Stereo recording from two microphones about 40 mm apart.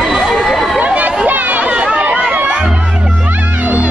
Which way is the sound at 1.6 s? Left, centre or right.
Right.